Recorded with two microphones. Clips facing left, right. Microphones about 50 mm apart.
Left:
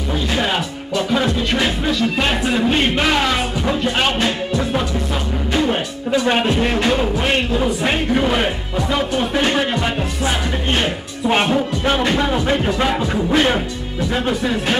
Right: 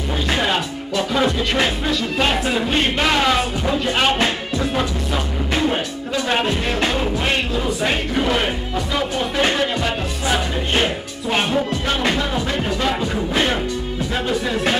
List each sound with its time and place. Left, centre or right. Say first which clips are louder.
1.1 s music: even; centre
6.2 s speech: left 2 dB; centre
7.8 s speech: left 2 dB; centre
9.5 s speech: left 1 dB; left